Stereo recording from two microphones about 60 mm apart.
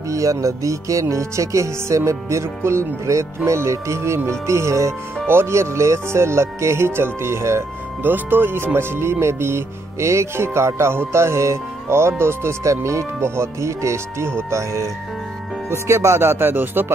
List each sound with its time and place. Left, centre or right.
0.1 s speech: right
5.2 s speech: right
8.0 s speech: right